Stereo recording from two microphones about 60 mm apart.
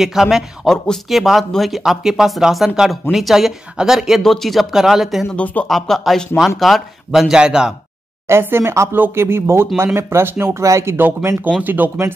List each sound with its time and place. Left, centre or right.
0.0 s a man's voice: centre
4.2 s a man's voice: centre
5.3 s speech: left
5.7 s a man's voice: centre
8.3 s speech: right
10.6 s speech: right
11.6 s speech: right